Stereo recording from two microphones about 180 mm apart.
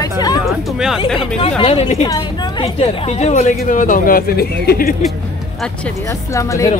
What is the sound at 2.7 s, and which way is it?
Speech, 35° left (ahead or behind).